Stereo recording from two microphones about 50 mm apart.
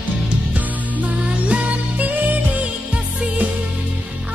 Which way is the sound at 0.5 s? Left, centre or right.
Right.